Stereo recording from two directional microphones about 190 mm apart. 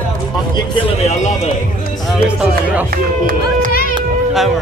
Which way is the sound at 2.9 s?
50° right (ahead or behind).